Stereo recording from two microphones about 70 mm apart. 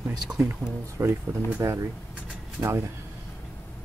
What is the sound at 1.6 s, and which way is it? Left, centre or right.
Speech, right.